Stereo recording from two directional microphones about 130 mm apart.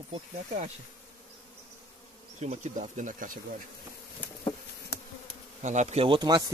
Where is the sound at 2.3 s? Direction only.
60° right (ahead or behind); by 3.4 s 85° right.